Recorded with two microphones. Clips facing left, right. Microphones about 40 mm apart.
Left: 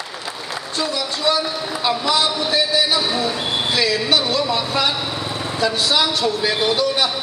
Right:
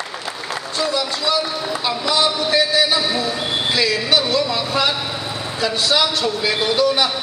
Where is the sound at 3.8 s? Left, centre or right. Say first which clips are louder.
Right 1 dB; centre.